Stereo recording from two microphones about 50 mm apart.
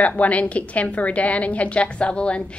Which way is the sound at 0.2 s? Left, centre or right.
Left.